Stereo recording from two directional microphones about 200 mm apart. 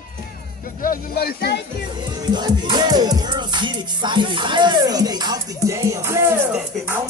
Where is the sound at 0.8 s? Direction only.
45° left (ahead or behind).